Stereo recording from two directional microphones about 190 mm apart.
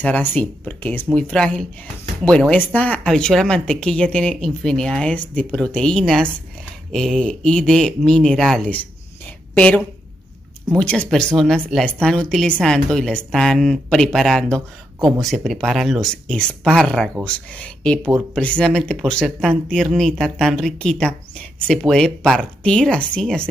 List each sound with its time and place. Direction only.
0.0 s speech: 10° left (ahead or behind)
10.7 s speech: 5° left (ahead or behind)